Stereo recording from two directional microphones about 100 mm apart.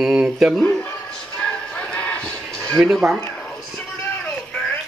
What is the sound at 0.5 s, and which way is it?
Speech, 10° left (ahead or behind).